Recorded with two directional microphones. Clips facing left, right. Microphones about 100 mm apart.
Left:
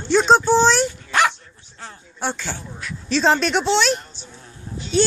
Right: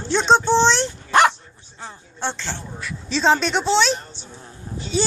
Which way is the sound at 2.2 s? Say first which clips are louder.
Left 1 dB; 10° left (ahead or behind).